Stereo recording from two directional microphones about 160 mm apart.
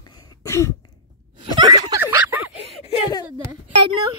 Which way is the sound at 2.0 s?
10° right (ahead or behind).